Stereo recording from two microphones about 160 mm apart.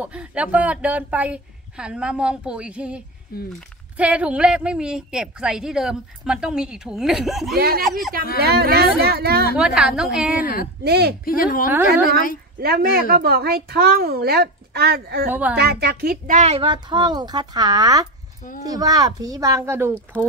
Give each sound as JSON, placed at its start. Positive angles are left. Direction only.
{"t": 0.0, "sound": "a woman's voice", "side_deg": -5}
{"t": 3.3, "sound": "speech", "side_deg": 70}
{"t": 3.9, "sound": "a woman's voice", "side_deg": -10}
{"t": 7.5, "sound": "a child's voice", "side_deg": -70}
{"t": 7.8, "sound": "a woman's voice", "side_deg": 0}
{"t": 8.4, "sound": "a child's voice", "side_deg": -85}
{"t": 9.6, "sound": "a woman's voice", "side_deg": -5}
{"t": 10.4, "sound": "speech", "side_deg": 65}
{"t": 10.8, "sound": "a woman's voice", "side_deg": -85}
{"t": 11.2, "sound": "speech", "side_deg": 60}
{"t": 11.7, "sound": "a woman's voice", "side_deg": -10}
{"t": 12.5, "sound": "a child's voice", "side_deg": -70}
{"t": 16.4, "sound": "speech", "side_deg": -35}